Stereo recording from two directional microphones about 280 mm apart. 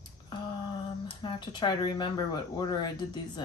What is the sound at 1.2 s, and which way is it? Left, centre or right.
A woman's voice, centre.